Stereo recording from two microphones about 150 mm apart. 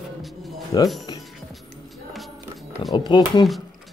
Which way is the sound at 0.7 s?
25° left (ahead or behind).